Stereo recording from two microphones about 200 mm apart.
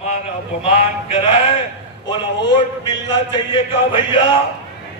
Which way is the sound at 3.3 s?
25° left (ahead or behind).